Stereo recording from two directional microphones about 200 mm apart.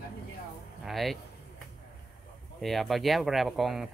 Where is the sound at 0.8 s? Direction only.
Centre (ahead or behind).